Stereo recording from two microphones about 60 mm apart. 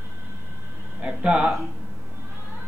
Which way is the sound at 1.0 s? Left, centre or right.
Centre.